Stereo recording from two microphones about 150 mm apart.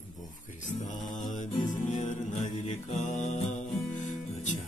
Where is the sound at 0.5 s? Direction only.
55° left (ahead or behind).